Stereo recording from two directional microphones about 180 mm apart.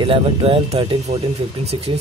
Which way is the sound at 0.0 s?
30° right (ahead or behind).